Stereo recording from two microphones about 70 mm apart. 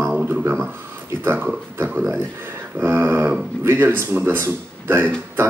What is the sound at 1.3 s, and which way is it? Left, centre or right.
Speech, right.